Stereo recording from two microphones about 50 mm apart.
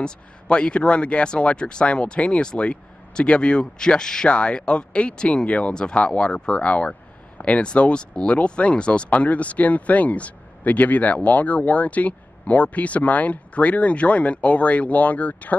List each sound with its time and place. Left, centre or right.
0.0 s speech: centre